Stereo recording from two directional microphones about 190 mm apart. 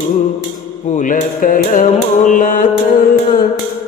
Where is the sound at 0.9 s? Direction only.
45° left (ahead or behind).